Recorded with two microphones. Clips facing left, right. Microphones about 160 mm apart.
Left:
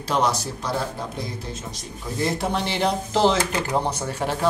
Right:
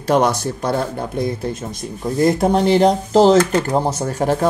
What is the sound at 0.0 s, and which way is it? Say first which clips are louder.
Speech: right 7 dB; 50° right (ahead or behind).